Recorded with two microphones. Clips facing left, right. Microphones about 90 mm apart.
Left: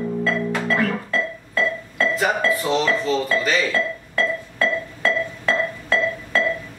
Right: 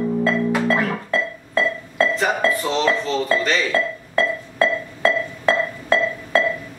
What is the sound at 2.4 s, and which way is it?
Speech, centre (ahead or behind).